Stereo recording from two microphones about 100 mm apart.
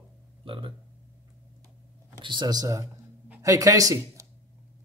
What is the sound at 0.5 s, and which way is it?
Speech, 60° right (ahead or behind).